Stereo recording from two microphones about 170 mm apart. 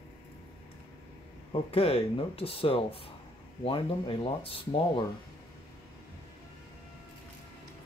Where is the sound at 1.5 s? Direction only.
35° left (ahead or behind).